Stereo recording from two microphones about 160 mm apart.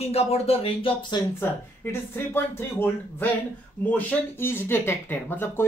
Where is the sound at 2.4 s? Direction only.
15° left (ahead or behind).